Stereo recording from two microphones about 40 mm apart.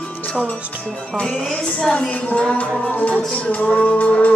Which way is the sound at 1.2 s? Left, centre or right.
Centre.